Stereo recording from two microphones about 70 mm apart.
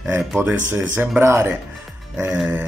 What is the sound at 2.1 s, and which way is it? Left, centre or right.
Speech, centre.